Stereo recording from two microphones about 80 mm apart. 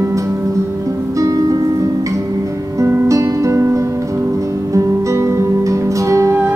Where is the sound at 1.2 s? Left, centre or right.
Right.